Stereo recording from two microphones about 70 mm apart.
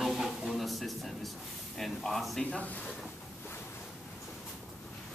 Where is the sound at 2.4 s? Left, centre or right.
Centre.